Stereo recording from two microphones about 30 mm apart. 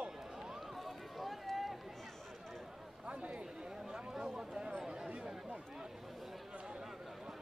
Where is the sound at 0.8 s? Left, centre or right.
Centre.